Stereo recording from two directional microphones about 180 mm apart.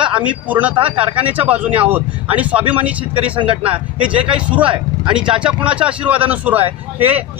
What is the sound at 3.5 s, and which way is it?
Speech, 30° right (ahead or behind).